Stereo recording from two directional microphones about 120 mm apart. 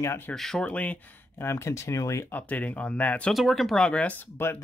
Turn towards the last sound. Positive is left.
turn(degrees=15)  # may be behind; listen again after turning